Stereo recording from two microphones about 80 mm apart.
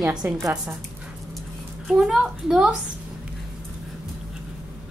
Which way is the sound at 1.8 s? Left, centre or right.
Centre.